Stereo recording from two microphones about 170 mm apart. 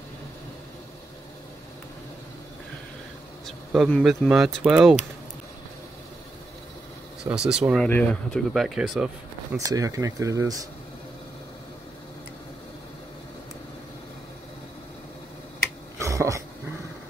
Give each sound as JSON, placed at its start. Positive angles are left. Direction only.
{"t": 3.4, "sound": "a sound", "side_deg": -5}
{"t": 4.0, "sound": "speech", "side_deg": 0}
{"t": 7.2, "sound": "speech", "side_deg": -5}
{"t": 9.6, "sound": "speech", "side_deg": -20}
{"t": 16.0, "sound": "throat clearing", "side_deg": -20}